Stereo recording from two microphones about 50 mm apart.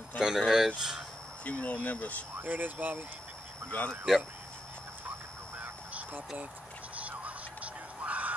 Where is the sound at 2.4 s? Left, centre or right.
Right.